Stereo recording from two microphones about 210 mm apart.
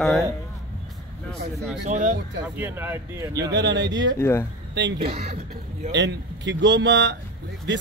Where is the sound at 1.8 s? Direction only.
35° right (ahead or behind).